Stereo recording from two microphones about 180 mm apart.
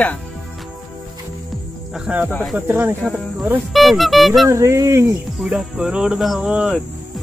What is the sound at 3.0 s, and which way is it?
Cricket, 5° right (ahead or behind).